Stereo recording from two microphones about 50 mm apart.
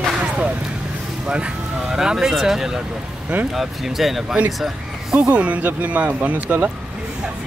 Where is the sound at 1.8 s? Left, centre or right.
Centre.